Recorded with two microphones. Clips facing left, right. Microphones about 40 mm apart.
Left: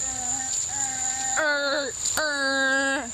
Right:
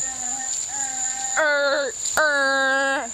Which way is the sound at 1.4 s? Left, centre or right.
Centre.